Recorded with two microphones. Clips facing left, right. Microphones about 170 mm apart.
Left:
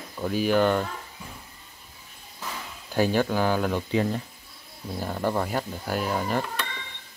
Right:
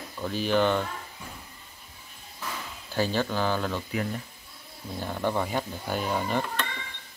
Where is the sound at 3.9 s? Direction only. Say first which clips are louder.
Left 6 dB; 25° left (ahead or behind).